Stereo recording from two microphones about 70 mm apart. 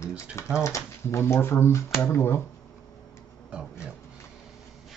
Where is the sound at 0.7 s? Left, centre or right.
Left.